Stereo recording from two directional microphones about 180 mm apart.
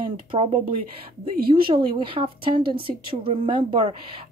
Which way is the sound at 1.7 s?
30° right (ahead or behind).